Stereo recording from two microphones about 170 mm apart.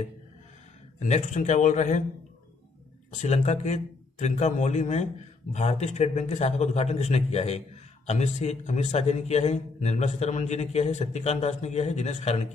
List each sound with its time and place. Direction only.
0.9 s a man's voice: 45° left (ahead or behind)
3.1 s a man's voice: 45° left (ahead or behind)